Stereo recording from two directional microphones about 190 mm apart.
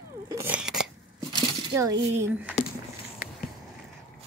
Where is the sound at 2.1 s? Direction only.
10° right (ahead or behind).